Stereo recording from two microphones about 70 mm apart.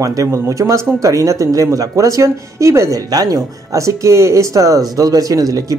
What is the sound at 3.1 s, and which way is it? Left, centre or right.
Speech, right.